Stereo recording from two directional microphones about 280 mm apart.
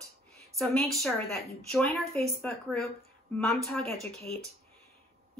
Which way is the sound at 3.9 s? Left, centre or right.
Right.